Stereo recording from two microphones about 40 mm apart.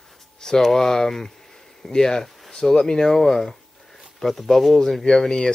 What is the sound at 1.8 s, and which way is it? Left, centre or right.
Speech, centre.